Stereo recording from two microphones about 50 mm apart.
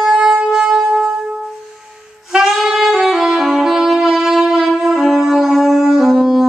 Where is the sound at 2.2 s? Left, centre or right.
Centre.